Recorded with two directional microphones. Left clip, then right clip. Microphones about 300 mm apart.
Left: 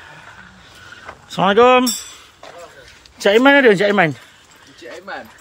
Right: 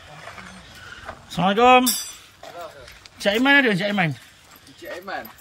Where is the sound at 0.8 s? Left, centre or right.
Centre.